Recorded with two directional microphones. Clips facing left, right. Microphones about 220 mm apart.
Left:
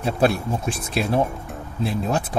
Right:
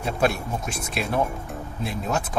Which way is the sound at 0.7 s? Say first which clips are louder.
Left 5 dB; 30° left (ahead or behind).